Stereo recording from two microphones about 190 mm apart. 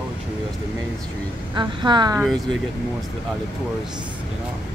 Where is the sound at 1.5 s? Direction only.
25° right (ahead or behind).